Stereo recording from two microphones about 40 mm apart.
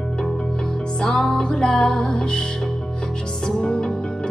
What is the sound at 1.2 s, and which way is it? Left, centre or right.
Music, centre.